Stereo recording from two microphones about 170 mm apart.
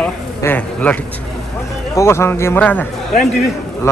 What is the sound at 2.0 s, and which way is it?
A man's voice, 15° left (ahead or behind).